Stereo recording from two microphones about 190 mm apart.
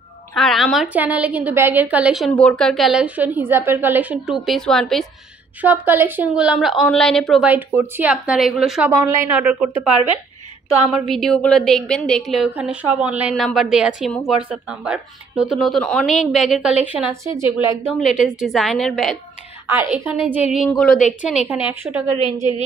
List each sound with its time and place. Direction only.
0.4 s a woman's voice: centre (ahead or behind)
5.6 s a woman's voice: 10° right (ahead or behind)
8.9 s a woman's voice: 15° right (ahead or behind)
17.3 s a woman's voice: 25° left (ahead or behind)
18.2 s a woman's voice: centre (ahead or behind)
19.7 s a woman's voice: 10° right (ahead or behind)
21.5 s a woman's voice: 10° right (ahead or behind)